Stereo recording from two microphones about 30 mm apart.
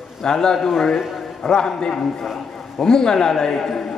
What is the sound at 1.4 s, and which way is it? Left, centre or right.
A man's voice, centre.